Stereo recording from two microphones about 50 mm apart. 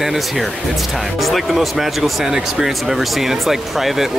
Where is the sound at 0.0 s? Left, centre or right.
Centre.